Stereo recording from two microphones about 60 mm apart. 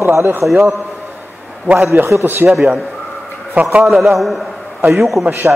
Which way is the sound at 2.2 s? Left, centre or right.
Right.